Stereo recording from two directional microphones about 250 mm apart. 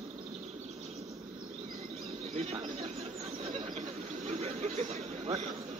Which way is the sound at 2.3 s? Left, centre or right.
Right.